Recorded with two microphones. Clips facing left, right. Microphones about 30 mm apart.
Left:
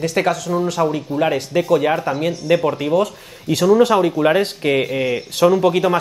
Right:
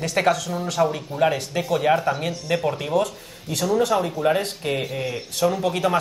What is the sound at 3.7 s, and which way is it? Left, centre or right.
Speech, left.